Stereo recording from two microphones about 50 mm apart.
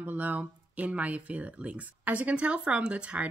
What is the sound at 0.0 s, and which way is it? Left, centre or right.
Speech, right.